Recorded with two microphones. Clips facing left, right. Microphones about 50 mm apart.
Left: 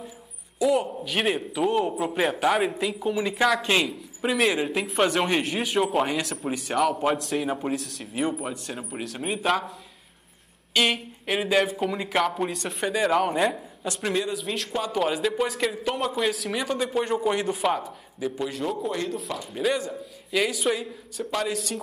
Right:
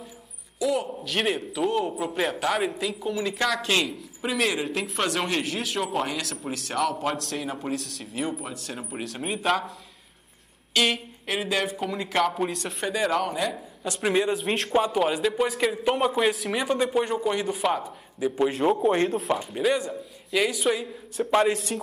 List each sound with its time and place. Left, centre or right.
0.6 s a man's voice: centre
13.3 s a man's voice: left
13.8 s speech: centre
14.4 s speech: right
14.9 s speech: centre
18.4 s a man's voice: right
19.5 s speech: centre
21.3 s speech: right